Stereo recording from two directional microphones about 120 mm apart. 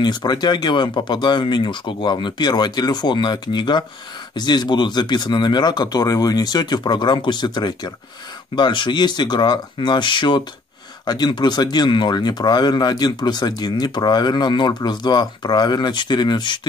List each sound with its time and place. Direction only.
0.0 s speech: 35° left (ahead or behind)